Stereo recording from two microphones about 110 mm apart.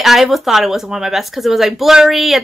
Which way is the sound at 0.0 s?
Centre (ahead or behind).